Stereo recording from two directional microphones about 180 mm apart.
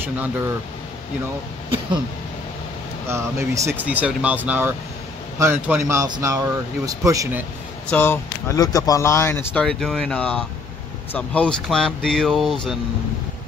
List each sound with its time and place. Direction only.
3.1 s speech: 15° right (ahead or behind)
7.9 s speech: 10° left (ahead or behind)